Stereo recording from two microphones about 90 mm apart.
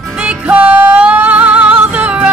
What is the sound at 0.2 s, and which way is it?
Music, 15° right (ahead or behind).